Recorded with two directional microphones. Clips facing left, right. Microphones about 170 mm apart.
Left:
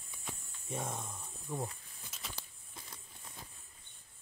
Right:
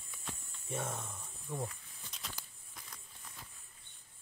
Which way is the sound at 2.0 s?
5° left (ahead or behind).